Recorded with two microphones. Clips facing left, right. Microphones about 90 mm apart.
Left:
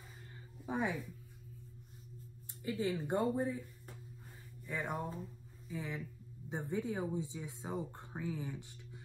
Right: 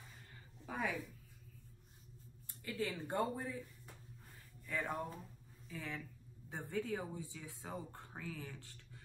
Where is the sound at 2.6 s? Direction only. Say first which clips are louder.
Left 5 dB; 20° left (ahead or behind).